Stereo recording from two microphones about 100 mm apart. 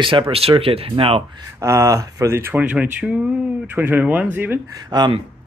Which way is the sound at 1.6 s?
30° right (ahead or behind).